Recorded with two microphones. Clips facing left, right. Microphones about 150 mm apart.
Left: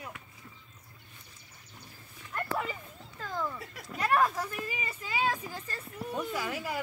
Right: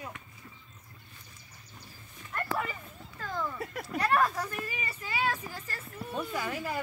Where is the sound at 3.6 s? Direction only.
50° right (ahead or behind).